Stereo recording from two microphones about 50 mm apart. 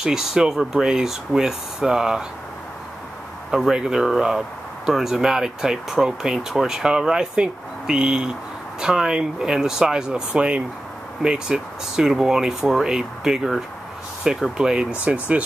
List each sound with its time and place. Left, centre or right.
0.0 s speech: centre
3.5 s speech: centre